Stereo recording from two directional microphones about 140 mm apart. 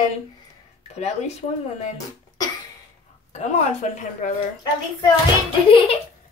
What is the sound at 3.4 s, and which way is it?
Speech, 60° left (ahead or behind).